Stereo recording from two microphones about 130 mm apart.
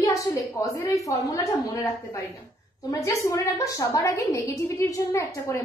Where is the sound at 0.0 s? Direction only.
25° left (ahead or behind).